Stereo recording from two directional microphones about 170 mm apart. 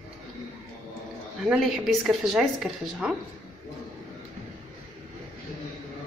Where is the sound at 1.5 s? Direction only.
Centre (ahead or behind).